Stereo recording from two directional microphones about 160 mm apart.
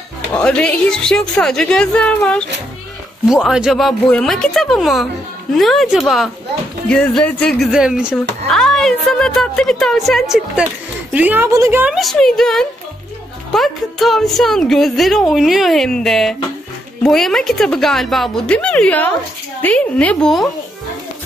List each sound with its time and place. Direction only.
0.3 s a woman's voice: 5° left (ahead or behind)
3.3 s a woman's voice: 5° right (ahead or behind)
11.9 s a woman's voice: centre (ahead or behind)